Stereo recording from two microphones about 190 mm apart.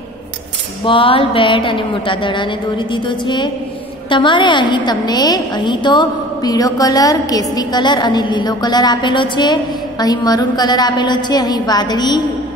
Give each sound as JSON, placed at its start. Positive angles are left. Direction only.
{"t": 0.8, "sound": "a woman's voice", "side_deg": 30}